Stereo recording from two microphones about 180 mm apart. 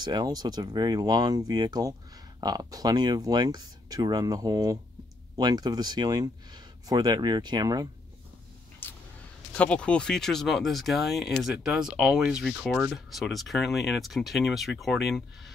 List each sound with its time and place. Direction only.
0.0 s speech: 20° right (ahead or behind)
8.8 s vehicle: 10° left (ahead or behind)
9.6 s speech: 5° left (ahead or behind)